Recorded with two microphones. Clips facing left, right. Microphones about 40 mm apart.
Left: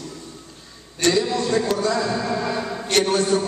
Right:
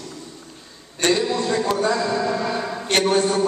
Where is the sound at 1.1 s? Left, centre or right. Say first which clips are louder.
Even; right.